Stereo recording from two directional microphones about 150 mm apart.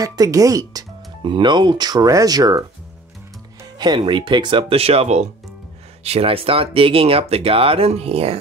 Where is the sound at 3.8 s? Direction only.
30° right (ahead or behind).